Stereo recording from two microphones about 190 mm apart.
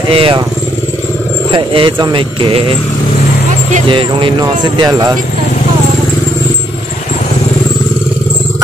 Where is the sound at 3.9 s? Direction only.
25° right (ahead or behind).